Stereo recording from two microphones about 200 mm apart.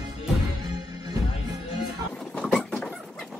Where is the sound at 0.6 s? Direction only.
20° right (ahead or behind).